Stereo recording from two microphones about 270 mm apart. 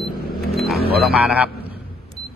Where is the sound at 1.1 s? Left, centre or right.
Centre.